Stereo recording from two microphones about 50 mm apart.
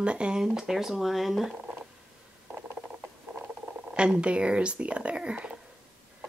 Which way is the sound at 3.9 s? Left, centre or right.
Centre.